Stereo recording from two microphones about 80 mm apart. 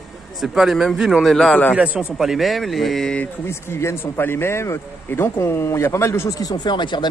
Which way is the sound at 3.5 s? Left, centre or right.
Left.